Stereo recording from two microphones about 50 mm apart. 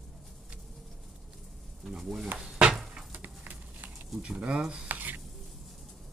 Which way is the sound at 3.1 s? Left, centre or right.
Right.